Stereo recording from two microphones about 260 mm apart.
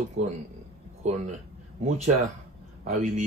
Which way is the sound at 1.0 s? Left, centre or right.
Right.